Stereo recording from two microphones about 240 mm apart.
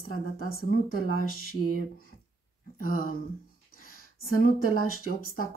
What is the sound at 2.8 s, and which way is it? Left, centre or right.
Speech, left.